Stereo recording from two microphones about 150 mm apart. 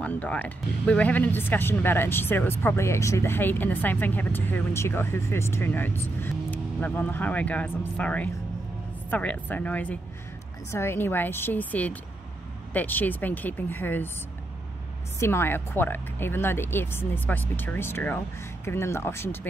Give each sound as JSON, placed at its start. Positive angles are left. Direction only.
{"t": 0.0, "sound": "speech", "side_deg": 10}
{"t": 15.1, "sound": "speech", "side_deg": 15}